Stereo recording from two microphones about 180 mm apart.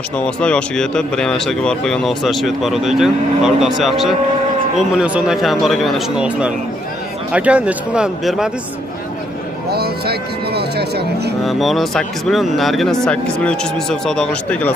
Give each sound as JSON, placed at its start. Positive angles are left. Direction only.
{"t": 0.2, "sound": "speech", "side_deg": 5}
{"t": 9.7, "sound": "speech", "side_deg": -60}
{"t": 11.4, "sound": "speech", "side_deg": 0}